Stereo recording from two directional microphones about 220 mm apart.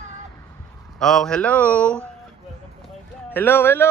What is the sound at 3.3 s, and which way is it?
Speech, 10° left (ahead or behind).